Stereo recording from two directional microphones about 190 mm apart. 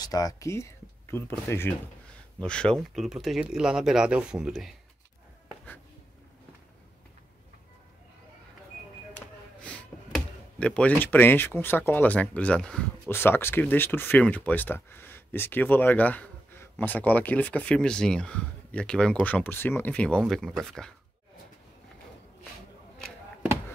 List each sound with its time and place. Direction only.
0.0 s speech: 20° left (ahead or behind)
2.4 s speech: 5° left (ahead or behind)
9.1 s speech: 5° left (ahead or behind)